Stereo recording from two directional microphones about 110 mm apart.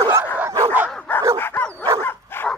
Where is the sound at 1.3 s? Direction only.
20° left (ahead or behind).